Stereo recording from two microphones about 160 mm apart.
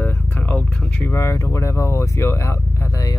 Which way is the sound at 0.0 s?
10° left (ahead or behind).